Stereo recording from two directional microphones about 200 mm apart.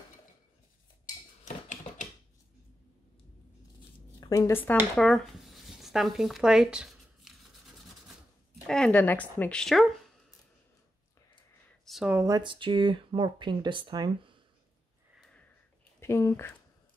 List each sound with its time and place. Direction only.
4.2 s speech: 15° left (ahead or behind)
4.9 s a sound: 5° left (ahead or behind)
8.6 s speech: 5° left (ahead or behind)
11.8 s speech: centre (ahead or behind); by 14.4 s 25° right (ahead or behind)
16.0 s speech: 15° left (ahead or behind)